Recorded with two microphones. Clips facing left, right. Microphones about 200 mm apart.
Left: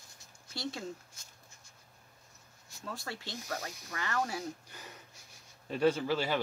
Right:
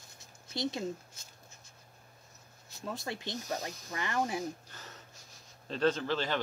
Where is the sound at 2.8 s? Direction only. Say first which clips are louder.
Right 4 dB; 20° right (ahead or behind).